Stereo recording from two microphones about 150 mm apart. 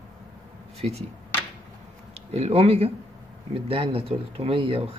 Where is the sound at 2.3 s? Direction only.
45° right (ahead or behind).